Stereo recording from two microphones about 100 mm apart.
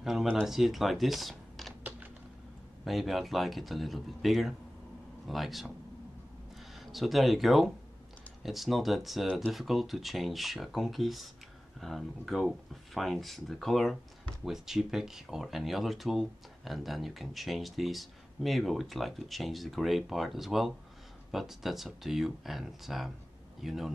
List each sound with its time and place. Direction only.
0.0 s speech: 5° right (ahead or behind)
1.8 s typing: 15° right (ahead or behind)
2.8 s speech: centre (ahead or behind)
6.9 s speech: centre (ahead or behind)